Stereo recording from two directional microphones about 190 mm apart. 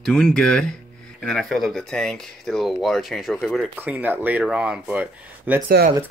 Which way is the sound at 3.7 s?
10° right (ahead or behind).